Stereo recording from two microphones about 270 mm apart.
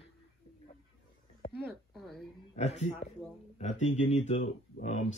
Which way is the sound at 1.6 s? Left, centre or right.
Centre.